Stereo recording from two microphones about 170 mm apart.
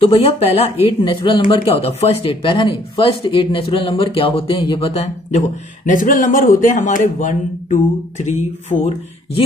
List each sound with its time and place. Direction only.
0.0 s speech: 35° left (ahead or behind)